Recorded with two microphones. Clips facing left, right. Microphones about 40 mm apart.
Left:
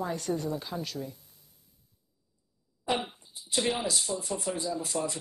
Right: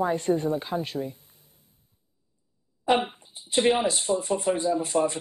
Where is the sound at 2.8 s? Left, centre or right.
Right.